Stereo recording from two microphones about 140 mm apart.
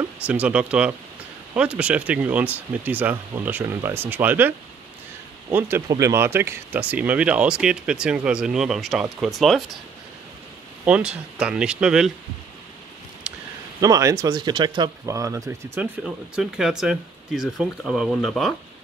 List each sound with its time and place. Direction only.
0.3 s speech: 10° right (ahead or behind)
10.9 s speech: 5° right (ahead or behind)
13.7 s speech: 25° right (ahead or behind)
15.0 s speech: 20° right (ahead or behind)
15.8 s speech: 5° right (ahead or behind)